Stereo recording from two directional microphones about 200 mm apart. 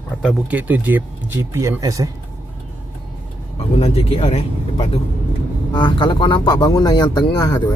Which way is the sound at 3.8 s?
30° left (ahead or behind).